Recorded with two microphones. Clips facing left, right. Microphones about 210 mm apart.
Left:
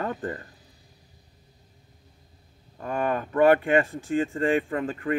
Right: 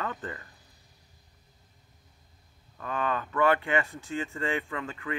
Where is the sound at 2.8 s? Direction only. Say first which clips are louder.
Left 4 dB; 45° left (ahead or behind).